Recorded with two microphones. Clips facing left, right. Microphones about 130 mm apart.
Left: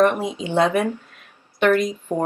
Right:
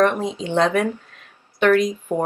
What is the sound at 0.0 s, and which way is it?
Speech, 10° left (ahead or behind).